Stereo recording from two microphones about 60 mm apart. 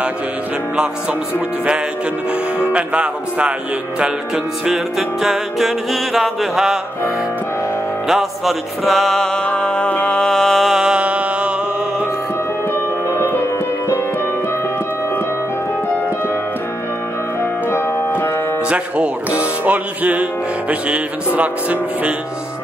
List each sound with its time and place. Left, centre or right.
2.7 s speech: centre
4.6 s music: centre
8.1 s music: centre
9.5 s music: left
10.1 s music: centre
10.9 s music: right
13.1 s music: left
17.6 s keyboard: left
18.7 s music: centre
20.9 s speech: right